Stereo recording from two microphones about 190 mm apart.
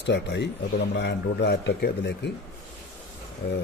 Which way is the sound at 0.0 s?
65° left (ahead or behind).